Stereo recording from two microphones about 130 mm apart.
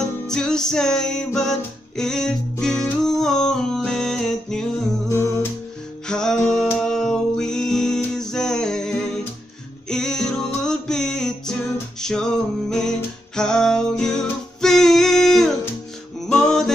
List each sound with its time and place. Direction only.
0.3 s music: 5° left (ahead or behind)
5.1 s humming: 20° left (ahead or behind)
6.0 s music: 5° left (ahead or behind)